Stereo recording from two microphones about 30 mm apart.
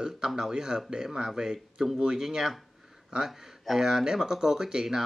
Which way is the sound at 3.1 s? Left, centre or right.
Right.